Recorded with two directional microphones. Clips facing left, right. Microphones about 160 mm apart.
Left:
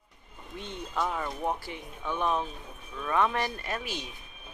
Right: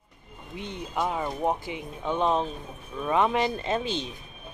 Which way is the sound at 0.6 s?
15° right (ahead or behind).